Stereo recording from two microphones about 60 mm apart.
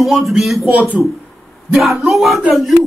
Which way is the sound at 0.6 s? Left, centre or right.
Right.